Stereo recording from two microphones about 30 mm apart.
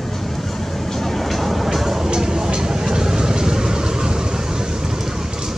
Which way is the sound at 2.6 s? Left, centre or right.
Right.